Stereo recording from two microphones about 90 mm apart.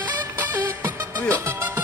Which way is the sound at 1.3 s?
35° right (ahead or behind).